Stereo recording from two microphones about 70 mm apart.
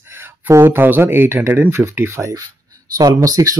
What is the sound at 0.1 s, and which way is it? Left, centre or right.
Speech, right.